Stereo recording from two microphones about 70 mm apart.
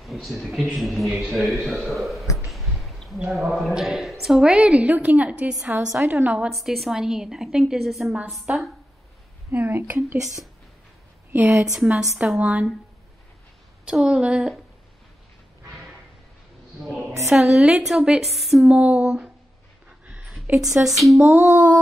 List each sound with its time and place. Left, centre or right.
0.0 s a man's voice: centre
2.3 s a sound: centre
3.3 s a woman's voice: centre; by 6.5 s right
6.5 s a woman's voice: centre
8.5 s a woman's voice: centre
11.3 s speech: right
11.6 s a woman's voice: centre
12.4 s a woman's voice: centre
13.8 s a woman's voice: centre
16.8 s a sound: centre
17.3 s a woman's voice: centre
18.6 s a woman's voice: centre
20.5 s a woman's voice: centre
21.2 s speech: right